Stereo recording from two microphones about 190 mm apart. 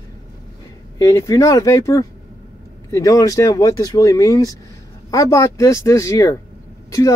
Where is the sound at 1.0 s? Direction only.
15° left (ahead or behind).